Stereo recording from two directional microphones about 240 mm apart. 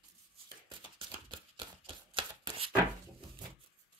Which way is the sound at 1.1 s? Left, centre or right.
Right.